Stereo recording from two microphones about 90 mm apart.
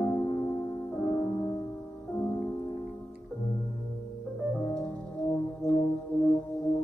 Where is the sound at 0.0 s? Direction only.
45° left (ahead or behind).